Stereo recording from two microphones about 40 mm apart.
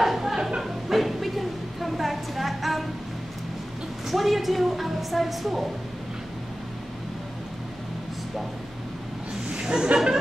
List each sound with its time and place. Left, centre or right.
0.0 s music: centre
0.4 s music: centre
4.1 s a woman's voice: centre
9.5 s chuckle: right